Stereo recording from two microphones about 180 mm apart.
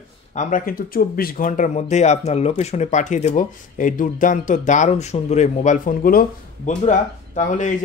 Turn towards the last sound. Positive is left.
turn(degrees=45)  # may be behind; listen again after turning